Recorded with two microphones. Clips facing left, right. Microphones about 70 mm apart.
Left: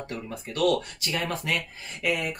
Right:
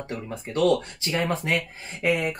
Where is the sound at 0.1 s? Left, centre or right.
Right.